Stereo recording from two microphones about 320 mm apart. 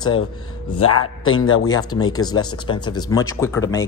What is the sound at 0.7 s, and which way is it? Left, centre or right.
Speech, left.